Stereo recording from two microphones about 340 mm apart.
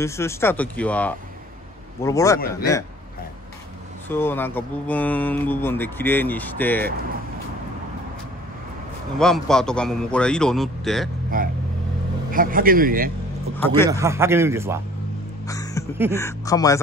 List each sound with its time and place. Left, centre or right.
0.0 s speech: centre
4.1 s speech: centre
9.2 s speech: centre
11.3 s a man's voice: right
13.6 s speech: centre
13.8 s a man's voice: centre
15.4 s music: centre
16.1 s speech: centre